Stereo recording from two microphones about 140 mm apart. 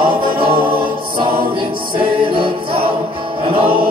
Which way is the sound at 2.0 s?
40° right (ahead or behind).